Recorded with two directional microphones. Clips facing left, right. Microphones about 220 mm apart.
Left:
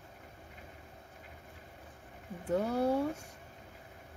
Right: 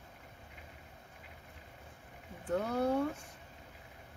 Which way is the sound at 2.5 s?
10° left (ahead or behind).